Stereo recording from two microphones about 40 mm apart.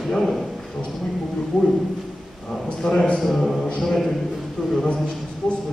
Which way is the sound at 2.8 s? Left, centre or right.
Centre.